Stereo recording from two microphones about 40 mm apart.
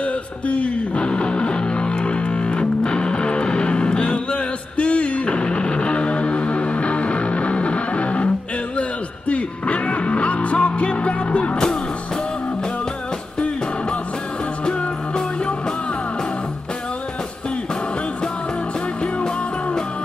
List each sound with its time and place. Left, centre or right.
0.0 s music: left
9.3 s music: left
11.5 s music: centre
14.6 s music: left